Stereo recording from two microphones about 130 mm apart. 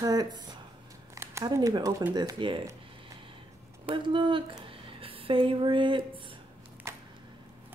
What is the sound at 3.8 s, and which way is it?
Speech, 40° right (ahead or behind).